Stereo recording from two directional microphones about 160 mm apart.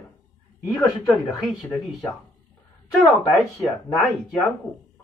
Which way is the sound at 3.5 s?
Centre (ahead or behind).